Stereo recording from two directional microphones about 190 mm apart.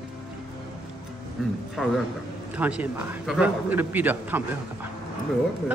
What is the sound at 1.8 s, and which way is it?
A man's voice, 5° right (ahead or behind).